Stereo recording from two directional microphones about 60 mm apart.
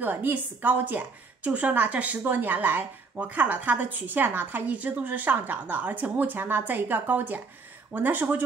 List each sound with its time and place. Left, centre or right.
0.0 s a woman's voice: right